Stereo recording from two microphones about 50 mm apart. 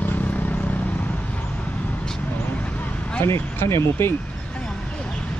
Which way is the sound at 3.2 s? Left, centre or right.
Left.